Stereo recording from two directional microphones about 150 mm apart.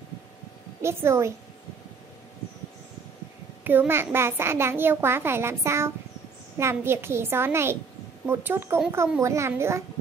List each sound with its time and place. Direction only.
0.8 s a child's voice: 20° right (ahead or behind)
3.6 s a child's voice: 15° right (ahead or behind)